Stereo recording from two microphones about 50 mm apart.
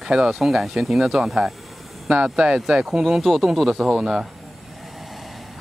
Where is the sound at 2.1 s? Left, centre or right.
Centre.